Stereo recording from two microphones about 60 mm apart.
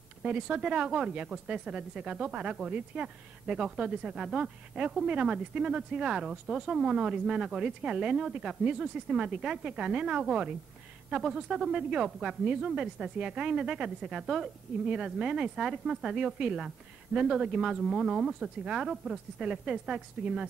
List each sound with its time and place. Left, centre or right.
0.2 s speech: centre